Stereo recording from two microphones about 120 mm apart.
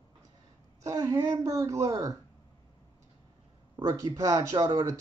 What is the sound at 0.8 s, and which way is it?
Speech, 25° right (ahead or behind).